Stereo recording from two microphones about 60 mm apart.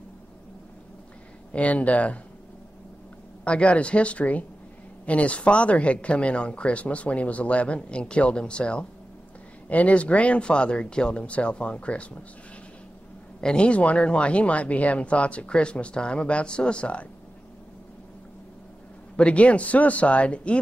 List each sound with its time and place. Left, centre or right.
1.5 s speech: left
3.4 s speech: centre
13.4 s speech: centre
19.1 s speech: centre